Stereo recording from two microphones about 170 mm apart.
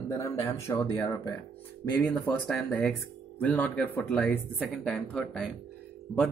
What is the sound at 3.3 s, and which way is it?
Speech, 10° left (ahead or behind).